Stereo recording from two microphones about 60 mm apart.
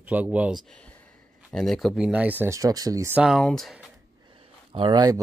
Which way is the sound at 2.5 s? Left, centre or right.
Right.